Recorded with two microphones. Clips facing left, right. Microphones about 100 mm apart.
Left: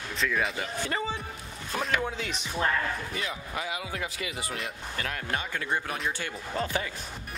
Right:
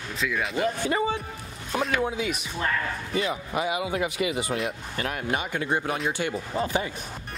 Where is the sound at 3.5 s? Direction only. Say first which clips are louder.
Right 8 dB; 15° right (ahead or behind).